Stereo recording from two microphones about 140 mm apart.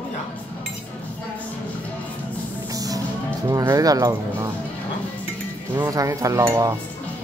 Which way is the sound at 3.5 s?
25° right (ahead or behind).